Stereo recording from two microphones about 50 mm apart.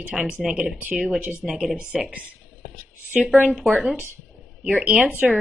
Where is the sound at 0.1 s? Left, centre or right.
Centre.